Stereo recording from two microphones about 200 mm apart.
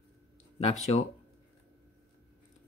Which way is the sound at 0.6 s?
30° left (ahead or behind).